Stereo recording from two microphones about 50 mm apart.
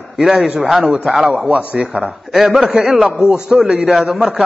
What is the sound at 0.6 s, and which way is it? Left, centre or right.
Speech, centre.